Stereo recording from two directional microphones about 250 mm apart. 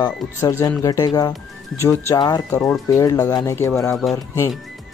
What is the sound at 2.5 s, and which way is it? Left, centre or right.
Speech, centre.